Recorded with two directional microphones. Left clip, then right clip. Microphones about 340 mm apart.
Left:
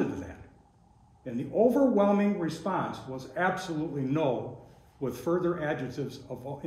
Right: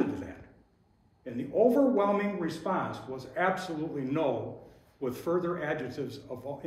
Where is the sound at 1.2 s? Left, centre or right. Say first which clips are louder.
Even; left.